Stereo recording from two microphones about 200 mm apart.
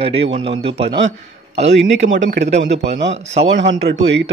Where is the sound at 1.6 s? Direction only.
65° right (ahead or behind).